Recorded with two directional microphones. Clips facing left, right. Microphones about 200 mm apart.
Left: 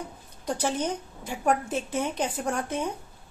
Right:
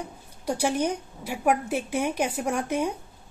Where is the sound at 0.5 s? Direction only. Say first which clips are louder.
Right 3 dB; 10° right (ahead or behind).